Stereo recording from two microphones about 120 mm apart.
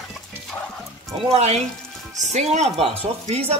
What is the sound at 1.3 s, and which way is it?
Speech, 60° right (ahead or behind).